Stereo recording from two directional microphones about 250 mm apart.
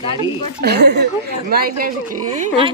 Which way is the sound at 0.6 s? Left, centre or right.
Right.